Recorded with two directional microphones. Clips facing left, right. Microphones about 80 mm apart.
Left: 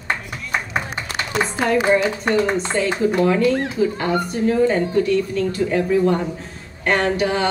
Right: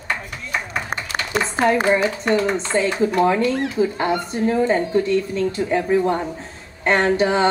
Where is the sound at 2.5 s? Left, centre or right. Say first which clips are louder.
Left 1 dB; left.